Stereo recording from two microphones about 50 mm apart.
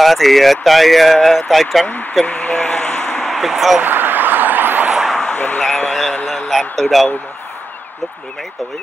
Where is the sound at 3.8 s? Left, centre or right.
Right.